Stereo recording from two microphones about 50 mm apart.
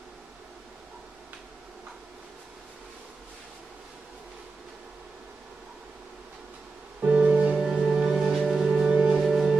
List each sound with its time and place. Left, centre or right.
7.0 s music: right
7.5 s music: centre